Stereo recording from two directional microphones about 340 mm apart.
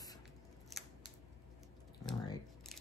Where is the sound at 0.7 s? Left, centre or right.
Centre.